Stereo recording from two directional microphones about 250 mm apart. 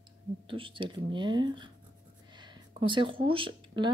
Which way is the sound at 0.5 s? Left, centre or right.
Right.